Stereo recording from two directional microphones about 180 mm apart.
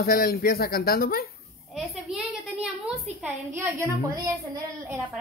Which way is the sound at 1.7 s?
Centre (ahead or behind).